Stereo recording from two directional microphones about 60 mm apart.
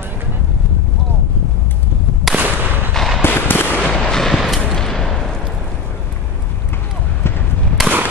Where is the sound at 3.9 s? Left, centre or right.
Centre.